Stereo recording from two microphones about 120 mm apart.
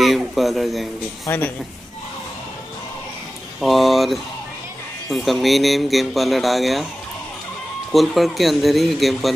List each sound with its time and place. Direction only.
0.0 s speech: centre (ahead or behind)
1.2 s speech: 15° left (ahead or behind)
3.6 s speech: centre (ahead or behind)
7.9 s speech: centre (ahead or behind)